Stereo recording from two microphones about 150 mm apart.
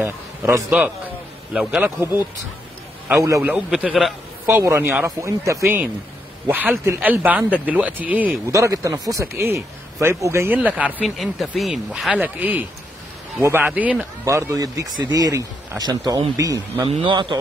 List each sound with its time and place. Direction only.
0.0 s a man's voice: 15° right (ahead or behind)
1.5 s speech: 5° right (ahead or behind)
3.2 s speech: 20° right (ahead or behind)
3.5 s speech: 5° right (ahead or behind)
4.5 s a man's voice: 15° right (ahead or behind)
4.8 s speech: 5° right (ahead or behind)
5.2 s a man's voice: 20° right (ahead or behind)
8.5 s a man's voice: 20° right (ahead or behind)
14.2 s speech: 20° right (ahead or behind)
16.8 s a man's voice: 35° right (ahead or behind)